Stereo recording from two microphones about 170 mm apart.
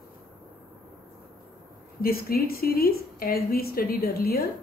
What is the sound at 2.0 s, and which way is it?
A woman's voice, 60° left (ahead or behind).